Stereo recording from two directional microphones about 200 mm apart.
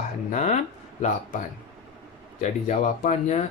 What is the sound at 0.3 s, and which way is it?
Speech, 35° left (ahead or behind).